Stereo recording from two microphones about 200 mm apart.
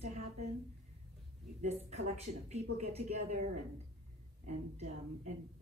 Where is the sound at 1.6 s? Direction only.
30° right (ahead or behind).